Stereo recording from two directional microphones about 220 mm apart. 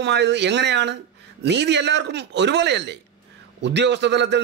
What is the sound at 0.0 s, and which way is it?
A man's voice, 50° right (ahead or behind).